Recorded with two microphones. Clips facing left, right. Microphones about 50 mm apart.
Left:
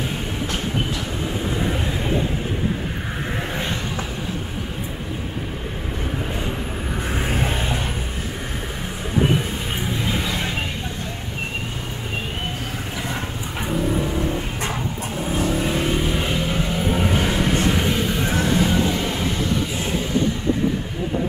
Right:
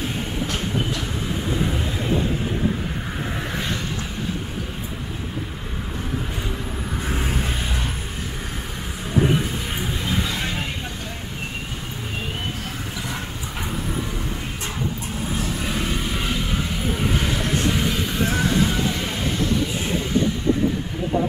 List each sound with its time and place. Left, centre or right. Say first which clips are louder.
7.0 s vehicle: left 2 dB; centre
9.8 s a sound: left 1 dB; centre
13.1 s vehicle: left 2 dB; centre